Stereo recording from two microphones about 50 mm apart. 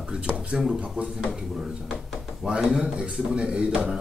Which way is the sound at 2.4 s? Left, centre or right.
Centre.